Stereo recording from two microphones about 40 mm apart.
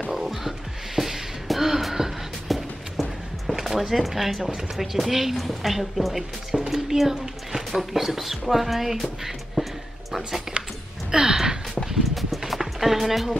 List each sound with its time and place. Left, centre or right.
0.1 s music: centre
3.8 s a woman's voice: centre
10.6 s a sound: right
11.1 s gasp: centre
11.8 s vehicle: centre
12.4 s a sound: centre